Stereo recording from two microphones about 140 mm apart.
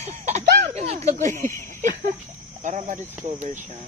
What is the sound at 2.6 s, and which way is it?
Cricket, 60° right (ahead or behind).